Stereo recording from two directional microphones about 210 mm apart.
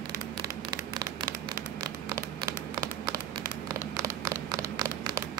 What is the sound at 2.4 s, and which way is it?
Crumpling, 20° right (ahead or behind).